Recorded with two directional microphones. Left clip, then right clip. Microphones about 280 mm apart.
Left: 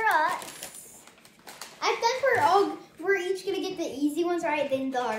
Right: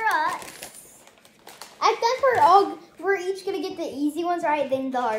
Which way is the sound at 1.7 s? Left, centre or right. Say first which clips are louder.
Right 5 dB; centre.